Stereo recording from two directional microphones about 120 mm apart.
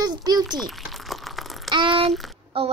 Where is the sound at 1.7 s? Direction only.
45° right (ahead or behind).